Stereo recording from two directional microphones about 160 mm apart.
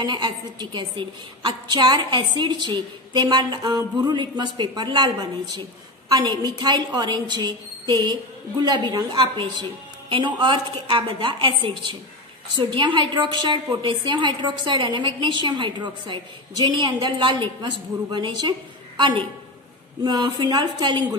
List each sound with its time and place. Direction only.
0.0 s a woman's voice: 25° right (ahead or behind)